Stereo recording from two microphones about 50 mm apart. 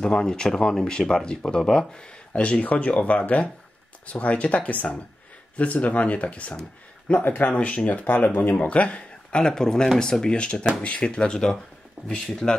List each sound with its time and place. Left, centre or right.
0.0 s speech: centre
7.1 s speech: left; by 12.5 s centre